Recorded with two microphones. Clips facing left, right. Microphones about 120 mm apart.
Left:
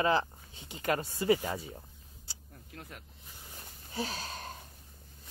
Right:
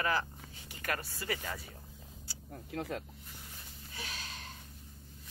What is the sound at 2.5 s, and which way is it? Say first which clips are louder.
Speech: right 11 dB; 90° right.